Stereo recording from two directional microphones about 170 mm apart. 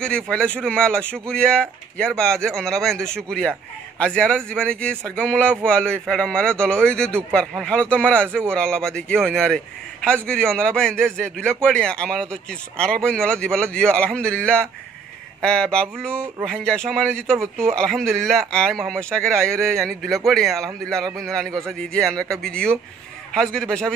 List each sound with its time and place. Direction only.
0.0 s a man's voice: 5° left (ahead or behind)
17.4 s speech: 15° right (ahead or behind)
17.7 s a man's voice: 5° left (ahead or behind)